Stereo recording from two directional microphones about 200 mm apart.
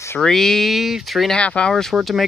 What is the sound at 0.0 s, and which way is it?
Speech, 10° left (ahead or behind).